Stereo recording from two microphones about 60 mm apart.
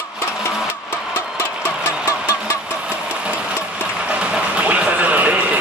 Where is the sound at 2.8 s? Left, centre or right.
Right.